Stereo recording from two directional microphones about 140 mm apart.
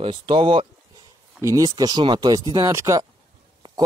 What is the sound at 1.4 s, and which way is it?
Speech, 25° right (ahead or behind).